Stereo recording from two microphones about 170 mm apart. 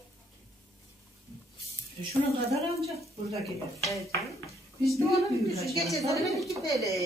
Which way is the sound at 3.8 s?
20° left (ahead or behind).